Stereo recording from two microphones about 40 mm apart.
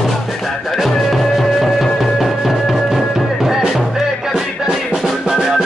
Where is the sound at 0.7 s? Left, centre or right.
Centre.